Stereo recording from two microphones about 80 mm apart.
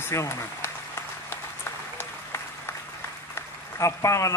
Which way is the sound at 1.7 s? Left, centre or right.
Left.